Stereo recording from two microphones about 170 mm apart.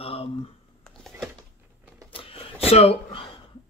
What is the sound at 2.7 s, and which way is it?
Speech, 35° left (ahead or behind).